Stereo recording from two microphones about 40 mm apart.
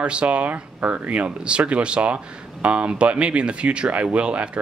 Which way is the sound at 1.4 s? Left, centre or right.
Right.